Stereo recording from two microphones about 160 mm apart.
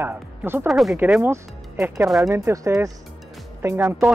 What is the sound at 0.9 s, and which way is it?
Speech, 10° right (ahead or behind).